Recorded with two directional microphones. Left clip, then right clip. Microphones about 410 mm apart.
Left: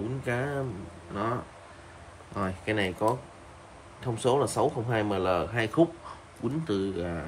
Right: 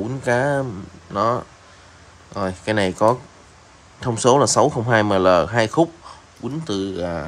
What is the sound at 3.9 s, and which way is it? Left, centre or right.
Speech, centre.